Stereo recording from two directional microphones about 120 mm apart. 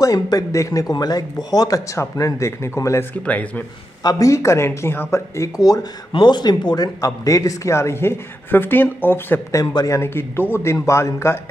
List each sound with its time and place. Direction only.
0.0 s a man's voice: 30° left (ahead or behind)
3.3 s a man's voice: 15° left (ahead or behind)
4.0 s a man's voice: 30° left (ahead or behind)
6.1 s a man's voice: 40° left (ahead or behind); by 11.3 s 20° left (ahead or behind)